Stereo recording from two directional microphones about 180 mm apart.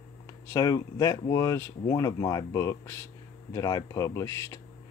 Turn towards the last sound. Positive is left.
turn(degrees=15)  # may be behind; listen again after turning